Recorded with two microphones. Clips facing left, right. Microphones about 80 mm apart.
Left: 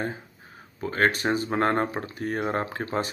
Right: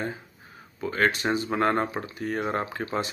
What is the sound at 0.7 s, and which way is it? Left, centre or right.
Speech, left.